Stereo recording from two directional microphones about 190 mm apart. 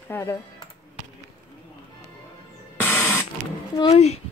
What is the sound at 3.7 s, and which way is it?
Speech, 35° left (ahead or behind).